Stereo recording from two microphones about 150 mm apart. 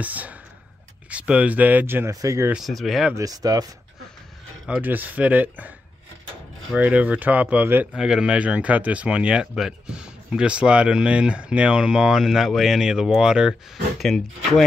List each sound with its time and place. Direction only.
0.0 s speech: 10° right (ahead or behind)
2.5 s speech: centre (ahead or behind)
3.2 s speech: 25° right (ahead or behind)
4.6 s speech: 10° right (ahead or behind)
6.7 s speech: 10° right (ahead or behind)